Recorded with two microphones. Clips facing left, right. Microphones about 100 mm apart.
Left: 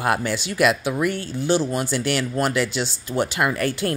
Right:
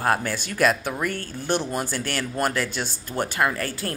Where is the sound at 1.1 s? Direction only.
60° right (ahead or behind).